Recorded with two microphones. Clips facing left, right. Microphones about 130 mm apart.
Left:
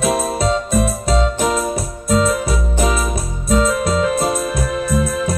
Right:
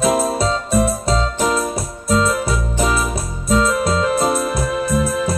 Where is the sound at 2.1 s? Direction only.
30° right (ahead or behind).